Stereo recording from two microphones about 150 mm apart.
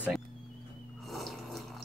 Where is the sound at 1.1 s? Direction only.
Centre (ahead or behind).